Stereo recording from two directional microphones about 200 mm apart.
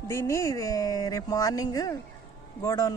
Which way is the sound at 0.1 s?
15° left (ahead or behind).